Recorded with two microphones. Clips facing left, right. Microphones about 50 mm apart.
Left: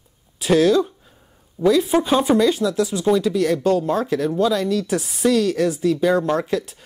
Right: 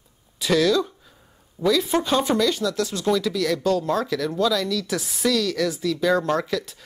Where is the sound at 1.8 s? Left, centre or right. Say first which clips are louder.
Left 4 dB; centre; by 6.2 s left.